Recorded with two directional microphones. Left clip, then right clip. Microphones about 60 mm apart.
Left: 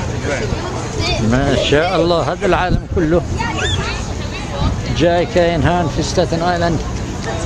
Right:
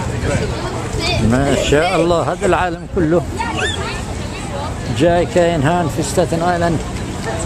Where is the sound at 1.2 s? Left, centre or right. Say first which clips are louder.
Left 1 dB; centre.